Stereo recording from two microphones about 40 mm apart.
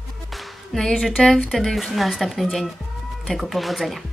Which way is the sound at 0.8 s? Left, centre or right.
Centre.